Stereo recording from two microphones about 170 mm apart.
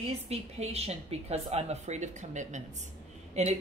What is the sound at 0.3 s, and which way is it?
Speech, 35° right (ahead or behind).